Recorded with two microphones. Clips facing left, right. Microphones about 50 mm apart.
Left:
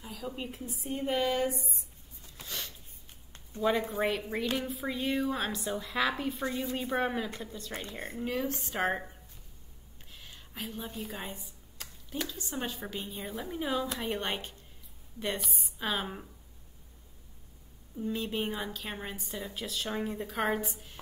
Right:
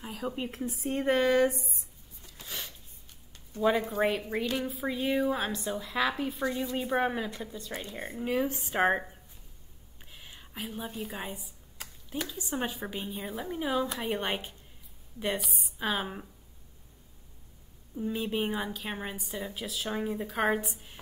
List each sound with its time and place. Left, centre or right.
0.0 s a woman's voice: right
0.5 s a woman's voice: right
0.7 s speech: right
2.4 s a sound: centre
3.6 s a woman's voice: centre
10.1 s a woman's voice: centre
17.9 s a woman's voice: centre